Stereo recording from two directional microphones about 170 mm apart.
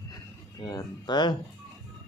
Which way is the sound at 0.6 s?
25° left (ahead or behind).